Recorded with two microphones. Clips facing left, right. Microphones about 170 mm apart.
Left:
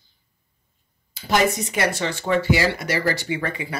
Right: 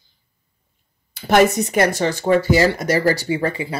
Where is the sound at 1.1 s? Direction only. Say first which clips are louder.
Right 6 dB; 55° right (ahead or behind).